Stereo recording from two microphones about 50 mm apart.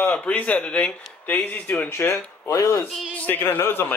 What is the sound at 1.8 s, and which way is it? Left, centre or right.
Speech, left.